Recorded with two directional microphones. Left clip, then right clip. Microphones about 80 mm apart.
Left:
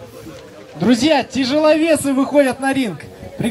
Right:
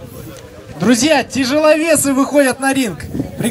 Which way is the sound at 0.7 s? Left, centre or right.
Right.